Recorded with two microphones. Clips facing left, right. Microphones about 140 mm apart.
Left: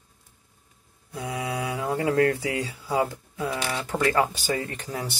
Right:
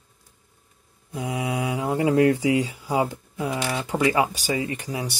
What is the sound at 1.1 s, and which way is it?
Speech, 20° right (ahead or behind).